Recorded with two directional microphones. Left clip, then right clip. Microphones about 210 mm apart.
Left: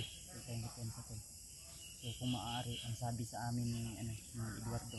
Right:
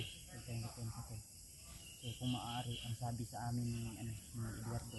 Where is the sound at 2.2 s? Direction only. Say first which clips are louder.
Left 1 dB; 35° left (ahead or behind).